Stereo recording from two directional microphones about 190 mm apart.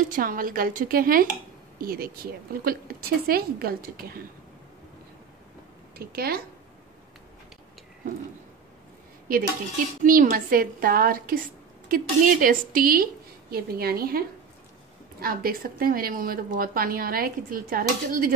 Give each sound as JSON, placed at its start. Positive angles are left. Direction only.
{"t": 0.1, "sound": "a woman's voice", "side_deg": -45}
{"t": 5.9, "sound": "a woman's voice", "side_deg": -55}
{"t": 10.0, "sound": "a woman's voice", "side_deg": -45}